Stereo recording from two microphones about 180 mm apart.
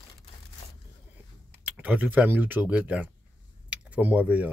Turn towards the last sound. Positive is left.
turn(degrees=-10)  # may be behind; listen again after turning